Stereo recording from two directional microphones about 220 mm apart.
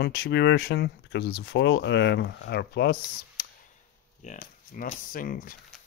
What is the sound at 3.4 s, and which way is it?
Clicking, 45° left (ahead or behind).